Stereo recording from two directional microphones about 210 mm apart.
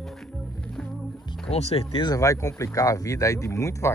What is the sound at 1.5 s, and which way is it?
Speech, 30° left (ahead or behind).